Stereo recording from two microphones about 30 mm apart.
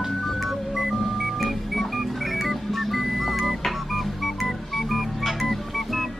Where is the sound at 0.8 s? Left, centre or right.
Centre.